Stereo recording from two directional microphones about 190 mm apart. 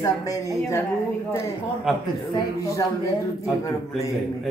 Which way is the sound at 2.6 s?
15° left (ahead or behind).